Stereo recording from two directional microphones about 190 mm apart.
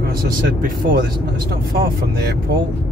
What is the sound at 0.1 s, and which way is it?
Speech, 50° right (ahead or behind).